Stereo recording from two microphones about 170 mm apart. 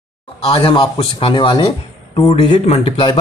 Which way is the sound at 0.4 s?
30° left (ahead or behind).